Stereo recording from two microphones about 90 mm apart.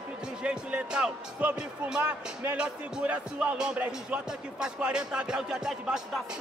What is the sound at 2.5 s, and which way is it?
Speech, 10° right (ahead or behind).